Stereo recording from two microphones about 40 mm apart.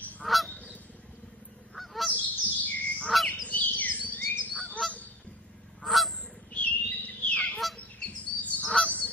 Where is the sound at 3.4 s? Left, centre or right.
Left.